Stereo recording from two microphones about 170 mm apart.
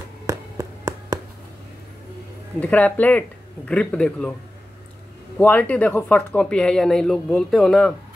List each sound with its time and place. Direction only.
0.3 s a sound: 15° right (ahead or behind)
2.6 s speech: 10° left (ahead or behind)
5.4 s speech: 10° left (ahead or behind)